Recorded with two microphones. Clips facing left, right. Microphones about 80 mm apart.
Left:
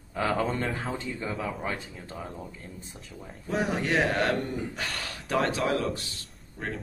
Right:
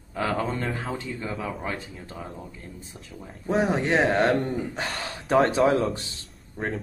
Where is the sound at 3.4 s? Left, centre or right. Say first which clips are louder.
Right 5 dB; right.